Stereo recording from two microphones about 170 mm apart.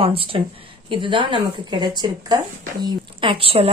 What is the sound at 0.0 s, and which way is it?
Speech, 35° right (ahead or behind).